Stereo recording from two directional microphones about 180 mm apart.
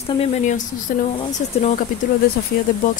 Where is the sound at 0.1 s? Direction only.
35° left (ahead or behind).